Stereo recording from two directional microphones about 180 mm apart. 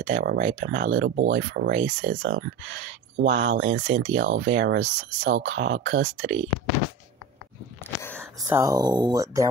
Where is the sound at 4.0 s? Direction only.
90° right.